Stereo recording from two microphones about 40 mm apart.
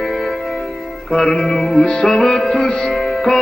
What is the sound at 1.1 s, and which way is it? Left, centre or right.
Music, centre.